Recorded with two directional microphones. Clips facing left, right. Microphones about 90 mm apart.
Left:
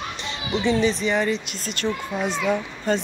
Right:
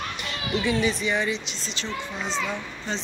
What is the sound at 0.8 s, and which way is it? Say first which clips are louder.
A child's voice: left 4 dB; 35° left (ahead or behind).